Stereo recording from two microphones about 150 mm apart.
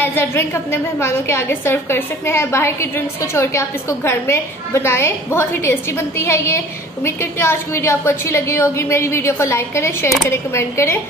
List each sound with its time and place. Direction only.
0.0 s a woman's voice: 15° left (ahead or behind)